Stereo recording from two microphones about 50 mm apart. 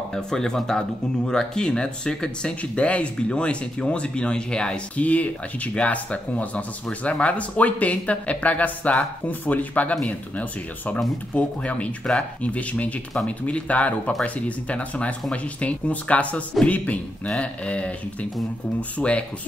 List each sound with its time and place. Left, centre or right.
0.1 s speech: centre
4.9 s speech: left
11.3 s speech: left